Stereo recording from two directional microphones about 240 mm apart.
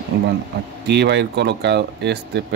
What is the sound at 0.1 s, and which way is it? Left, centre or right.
Speech, right.